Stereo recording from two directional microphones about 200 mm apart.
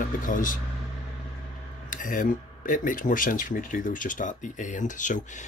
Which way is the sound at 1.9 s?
40° left (ahead or behind).